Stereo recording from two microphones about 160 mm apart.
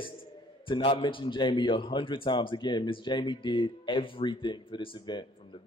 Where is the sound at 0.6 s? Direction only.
35° left (ahead or behind).